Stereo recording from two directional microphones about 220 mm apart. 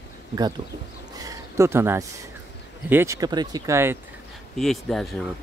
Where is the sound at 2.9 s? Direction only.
10° right (ahead or behind).